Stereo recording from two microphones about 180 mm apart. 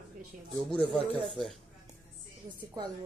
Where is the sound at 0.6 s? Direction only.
5° left (ahead or behind).